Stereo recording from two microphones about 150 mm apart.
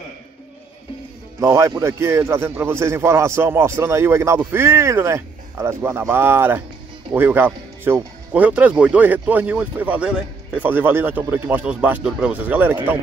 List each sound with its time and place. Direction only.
1.4 s speech: 20° right (ahead or behind)